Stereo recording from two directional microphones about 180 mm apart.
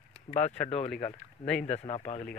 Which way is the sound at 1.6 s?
35° left (ahead or behind).